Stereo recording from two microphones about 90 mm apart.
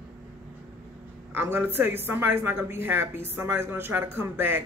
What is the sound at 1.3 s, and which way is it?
Speech, 25° right (ahead or behind).